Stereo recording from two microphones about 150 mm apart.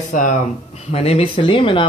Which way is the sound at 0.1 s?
55° left (ahead or behind).